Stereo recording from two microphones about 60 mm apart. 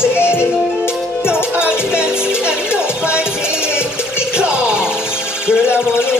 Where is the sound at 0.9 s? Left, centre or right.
Centre.